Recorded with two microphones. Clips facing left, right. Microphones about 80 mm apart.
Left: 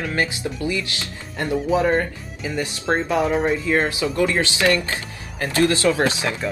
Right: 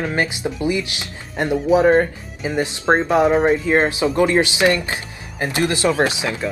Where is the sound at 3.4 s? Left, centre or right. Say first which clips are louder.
Right 4 dB; right.